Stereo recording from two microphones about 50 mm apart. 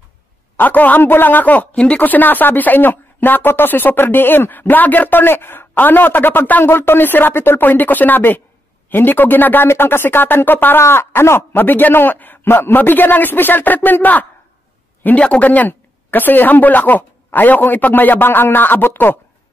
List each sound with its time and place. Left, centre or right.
0.6 s speech: left
6.6 s speech: left
10.8 s speech: left
15.0 s speech: left